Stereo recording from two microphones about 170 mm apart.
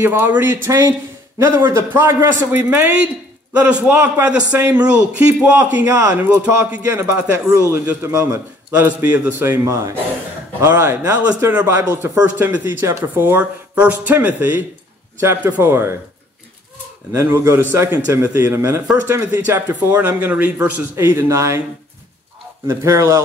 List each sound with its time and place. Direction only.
0.0 s a man's voice: 10° right (ahead or behind)
17.1 s a man's voice: 15° right (ahead or behind)
22.7 s a man's voice: 15° right (ahead or behind)